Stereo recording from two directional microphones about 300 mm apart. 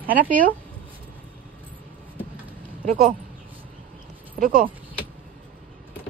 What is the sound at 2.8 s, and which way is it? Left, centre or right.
Speech, right.